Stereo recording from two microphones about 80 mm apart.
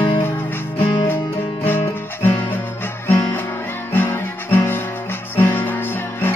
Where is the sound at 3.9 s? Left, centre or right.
Left.